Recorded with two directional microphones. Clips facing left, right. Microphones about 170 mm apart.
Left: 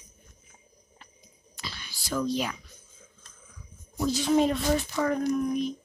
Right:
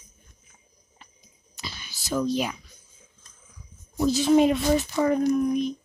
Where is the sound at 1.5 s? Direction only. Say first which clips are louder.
Right 1 dB; 20° right (ahead or behind).